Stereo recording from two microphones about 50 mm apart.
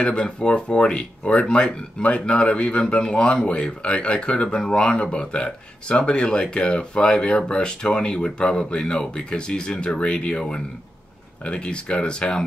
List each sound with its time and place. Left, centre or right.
0.0 s speech: left